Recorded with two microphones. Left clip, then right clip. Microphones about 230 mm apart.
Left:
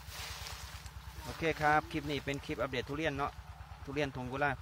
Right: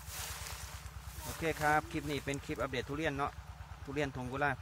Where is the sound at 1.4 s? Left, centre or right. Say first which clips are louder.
Left 2 dB; centre.